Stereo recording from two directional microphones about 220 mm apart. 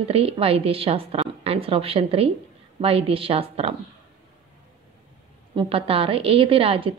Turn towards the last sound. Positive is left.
turn(degrees=-25)  # may be behind; listen again after turning